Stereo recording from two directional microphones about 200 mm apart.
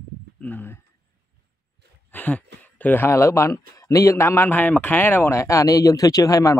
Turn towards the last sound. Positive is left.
turn(degrees=15)  # may be behind; listen again after turning